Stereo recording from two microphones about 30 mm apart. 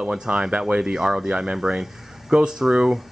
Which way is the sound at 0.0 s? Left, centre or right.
Right.